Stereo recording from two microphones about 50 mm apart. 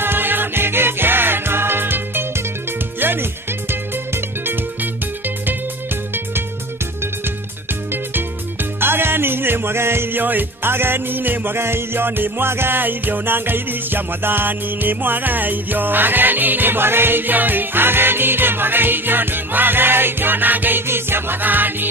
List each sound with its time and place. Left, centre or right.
0.0 s music: right
7.9 s music: right
20.8 s music: right